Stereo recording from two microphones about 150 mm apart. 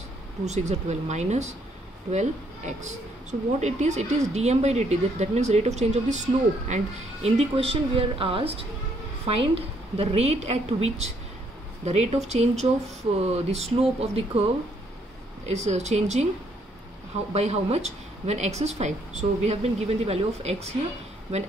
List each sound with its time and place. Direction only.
0.5 s speech: 50° right (ahead or behind)
7.2 s a woman's voice: 40° right (ahead or behind)
15.4 s speech: 50° right (ahead or behind)
17.3 s speech: 45° right (ahead or behind)